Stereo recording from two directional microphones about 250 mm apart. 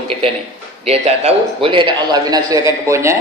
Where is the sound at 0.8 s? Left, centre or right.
Right.